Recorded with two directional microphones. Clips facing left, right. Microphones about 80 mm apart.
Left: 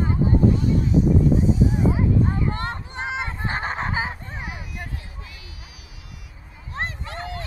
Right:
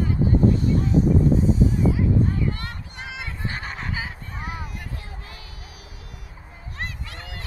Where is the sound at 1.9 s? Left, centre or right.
Left.